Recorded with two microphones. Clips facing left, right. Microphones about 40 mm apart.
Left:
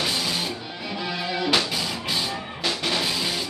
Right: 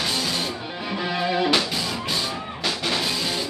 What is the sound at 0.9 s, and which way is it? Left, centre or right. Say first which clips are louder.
Music: right 5 dB; centre.